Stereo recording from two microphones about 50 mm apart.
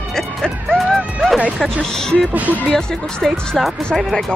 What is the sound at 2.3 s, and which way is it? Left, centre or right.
Speech, right.